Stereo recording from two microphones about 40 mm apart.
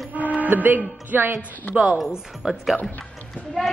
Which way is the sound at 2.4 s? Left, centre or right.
Centre.